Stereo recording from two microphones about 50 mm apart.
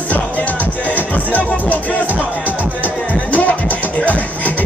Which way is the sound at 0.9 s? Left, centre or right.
Left.